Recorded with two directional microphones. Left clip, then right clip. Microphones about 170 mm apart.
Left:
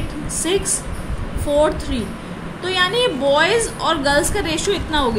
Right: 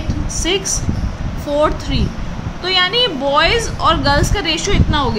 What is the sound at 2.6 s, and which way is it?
A woman's voice, 15° right (ahead or behind).